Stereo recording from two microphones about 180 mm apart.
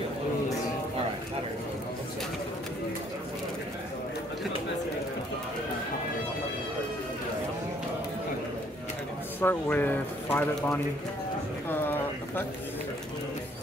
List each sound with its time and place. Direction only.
9.4 s speech: 10° left (ahead or behind)
11.7 s bird: 10° left (ahead or behind)